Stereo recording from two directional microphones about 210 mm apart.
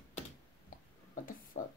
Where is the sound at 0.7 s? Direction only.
40° left (ahead or behind).